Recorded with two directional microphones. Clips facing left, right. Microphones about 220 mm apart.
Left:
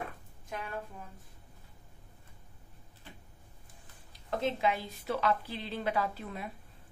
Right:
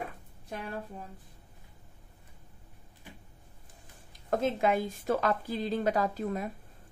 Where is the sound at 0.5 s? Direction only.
35° right (ahead or behind).